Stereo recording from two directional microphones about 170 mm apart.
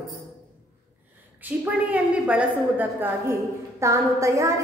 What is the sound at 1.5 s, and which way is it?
A woman's voice, 10° right (ahead or behind).